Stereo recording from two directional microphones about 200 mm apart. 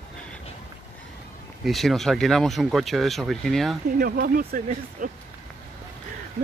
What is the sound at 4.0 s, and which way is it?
Speech, 45° right (ahead or behind).